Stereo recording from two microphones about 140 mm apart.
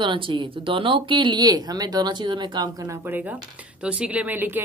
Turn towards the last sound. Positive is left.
turn(degrees=-15)  # may be behind; listen again after turning